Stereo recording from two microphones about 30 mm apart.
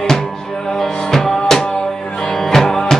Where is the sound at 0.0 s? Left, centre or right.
Centre.